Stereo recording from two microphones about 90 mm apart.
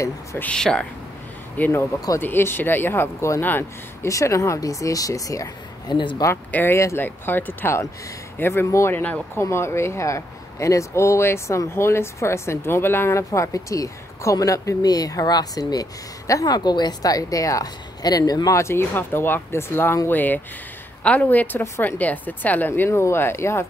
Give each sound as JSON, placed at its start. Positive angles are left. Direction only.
{"t": 0.4, "sound": "speech", "side_deg": 10}
{"t": 1.6, "sound": "a woman's voice", "side_deg": 25}
{"t": 4.1, "sound": "speech", "side_deg": 35}
{"t": 5.9, "sound": "speech", "side_deg": 60}
{"t": 6.5, "sound": "a woman's voice", "side_deg": 25}
{"t": 8.9, "sound": "a woman's voice", "side_deg": 20}